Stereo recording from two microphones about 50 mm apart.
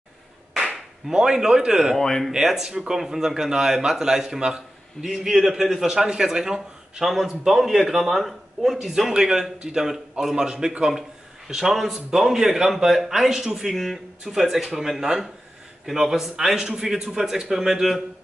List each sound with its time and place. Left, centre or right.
0.6 s speech: centre
2.0 s speech: centre
2.3 s a man's voice: centre